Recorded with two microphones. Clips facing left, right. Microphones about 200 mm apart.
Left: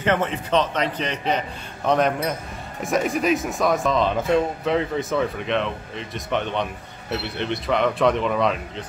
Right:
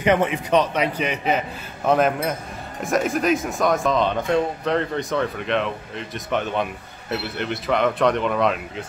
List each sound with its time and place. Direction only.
0.0 s a man's voice: 15° right (ahead or behind)